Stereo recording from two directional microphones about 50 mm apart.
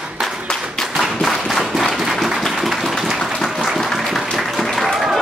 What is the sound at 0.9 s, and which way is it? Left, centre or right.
Clapping, centre.